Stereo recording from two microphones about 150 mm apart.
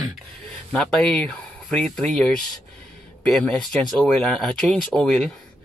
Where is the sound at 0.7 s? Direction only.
5° left (ahead or behind).